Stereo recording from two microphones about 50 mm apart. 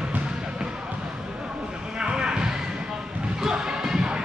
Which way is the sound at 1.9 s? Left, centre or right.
Centre.